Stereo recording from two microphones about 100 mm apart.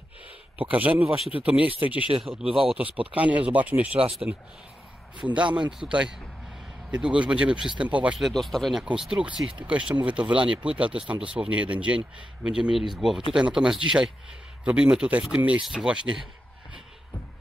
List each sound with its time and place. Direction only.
0.6 s speech: 15° right (ahead or behind)
1.0 s speech: 5° right (ahead or behind)
1.4 s speech: 15° right (ahead or behind)
2.1 s speech: 65° right (ahead or behind)
3.1 s speech: 15° right (ahead or behind)
5.3 s speech: 10° right (ahead or behind)
8.3 s speech: centre (ahead or behind)
9.0 s speech: 10° right (ahead or behind)